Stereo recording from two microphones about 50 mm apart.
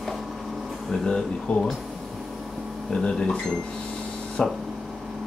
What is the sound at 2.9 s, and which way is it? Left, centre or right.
Speech, centre.